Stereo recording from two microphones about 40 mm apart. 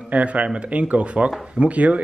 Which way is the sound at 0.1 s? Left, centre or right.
Right.